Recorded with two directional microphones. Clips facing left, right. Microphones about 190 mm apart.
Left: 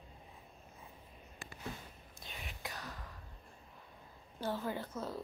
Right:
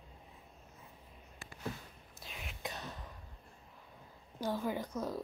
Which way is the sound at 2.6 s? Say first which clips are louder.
Right 4 dB; 25° right (ahead or behind).